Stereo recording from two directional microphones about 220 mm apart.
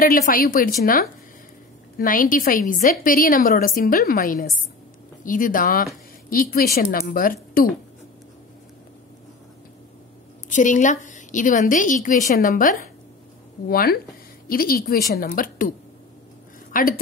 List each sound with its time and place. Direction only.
0.0 s a woman's voice: 40° left (ahead or behind)
10.5 s a woman's voice: 35° left (ahead or behind)
16.7 s a woman's voice: 40° left (ahead or behind)